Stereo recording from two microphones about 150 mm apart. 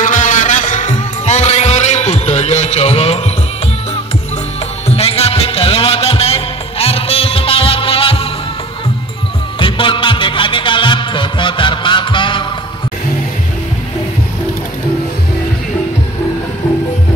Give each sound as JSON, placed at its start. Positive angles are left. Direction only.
{"t": 0.0, "sound": "music", "side_deg": 55}
{"t": 4.8, "sound": "music", "side_deg": 40}
{"t": 9.6, "sound": "music", "side_deg": 35}